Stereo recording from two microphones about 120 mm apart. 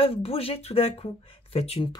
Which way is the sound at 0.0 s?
55° left (ahead or behind).